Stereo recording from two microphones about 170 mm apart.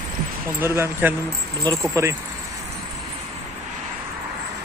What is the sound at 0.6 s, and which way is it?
Speech, 15° right (ahead or behind).